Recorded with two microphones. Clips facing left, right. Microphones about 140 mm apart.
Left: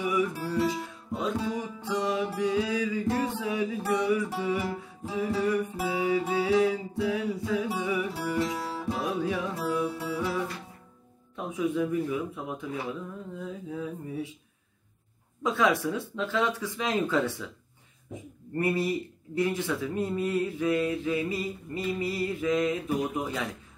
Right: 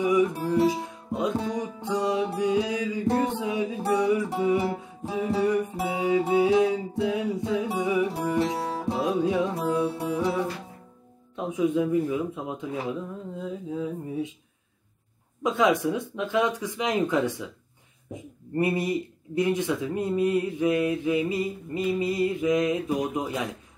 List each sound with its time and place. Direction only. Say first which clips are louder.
0.0 s music: right 5 dB; 20° right (ahead or behind)
11.3 s a sound: right 4 dB; 25° right (ahead or behind)
13.7 s mantra: right 4 dB; 20° right (ahead or behind)
15.4 s speech: right 3 dB; 20° right (ahead or behind)
18.6 s speech: right 2 dB; 15° right (ahead or behind)